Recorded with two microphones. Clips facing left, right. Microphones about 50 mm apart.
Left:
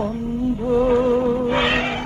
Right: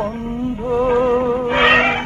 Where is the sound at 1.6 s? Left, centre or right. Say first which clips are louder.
Right 7 dB; right.